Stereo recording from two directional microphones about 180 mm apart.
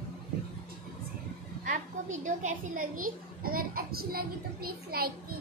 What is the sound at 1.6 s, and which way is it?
A woman's voice, 45° right (ahead or behind).